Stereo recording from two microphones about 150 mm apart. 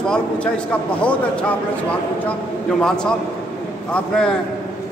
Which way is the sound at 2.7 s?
5° left (ahead or behind).